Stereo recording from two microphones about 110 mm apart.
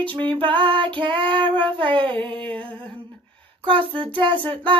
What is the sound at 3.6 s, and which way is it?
Female singing, 50° right (ahead or behind).